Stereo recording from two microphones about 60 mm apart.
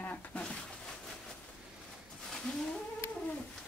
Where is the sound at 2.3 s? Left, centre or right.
Centre.